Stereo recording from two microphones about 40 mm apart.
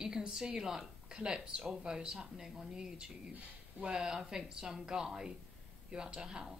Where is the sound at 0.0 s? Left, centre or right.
Centre.